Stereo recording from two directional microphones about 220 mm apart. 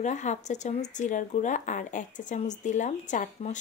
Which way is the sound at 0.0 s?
35° left (ahead or behind).